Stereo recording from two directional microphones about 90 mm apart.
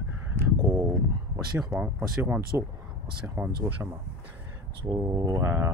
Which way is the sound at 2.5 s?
20° right (ahead or behind).